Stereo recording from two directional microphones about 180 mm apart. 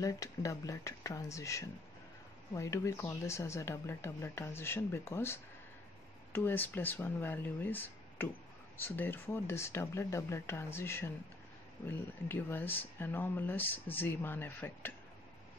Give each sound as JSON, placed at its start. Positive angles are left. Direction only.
{"t": 0.0, "sound": "speech", "side_deg": 20}